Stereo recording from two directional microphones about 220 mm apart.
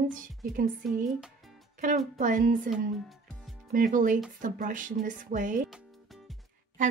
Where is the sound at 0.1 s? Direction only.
40° right (ahead or behind).